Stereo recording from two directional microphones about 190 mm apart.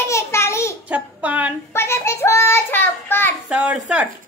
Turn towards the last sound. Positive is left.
turn(degrees=-5)  # may be behind; listen again after turning